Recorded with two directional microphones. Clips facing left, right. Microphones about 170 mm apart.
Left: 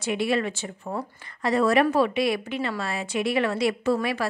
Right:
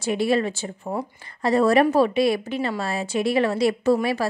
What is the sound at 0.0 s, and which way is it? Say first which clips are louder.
A woman's voice: right 3 dB; 35° right (ahead or behind).